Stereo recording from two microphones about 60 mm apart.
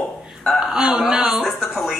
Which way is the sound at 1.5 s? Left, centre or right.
Centre.